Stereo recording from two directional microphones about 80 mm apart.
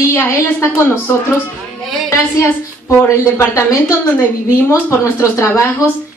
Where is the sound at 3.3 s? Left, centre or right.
Left.